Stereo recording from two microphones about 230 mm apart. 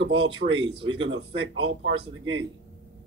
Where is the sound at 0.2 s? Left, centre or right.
Right.